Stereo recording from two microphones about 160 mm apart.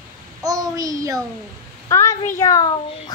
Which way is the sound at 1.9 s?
20° left (ahead or behind).